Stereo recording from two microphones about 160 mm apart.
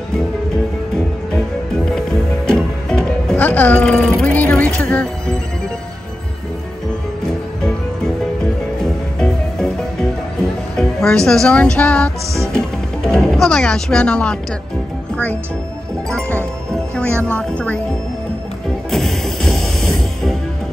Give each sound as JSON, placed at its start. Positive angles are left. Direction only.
{"t": 1.9, "sound": "music", "side_deg": 5}
{"t": 10.8, "sound": "speech", "side_deg": 5}
{"t": 12.5, "sound": "music", "side_deg": 5}
{"t": 16.1, "sound": "music", "side_deg": 10}
{"t": 17.3, "sound": "speech", "side_deg": 10}
{"t": 18.9, "sound": "music", "side_deg": 0}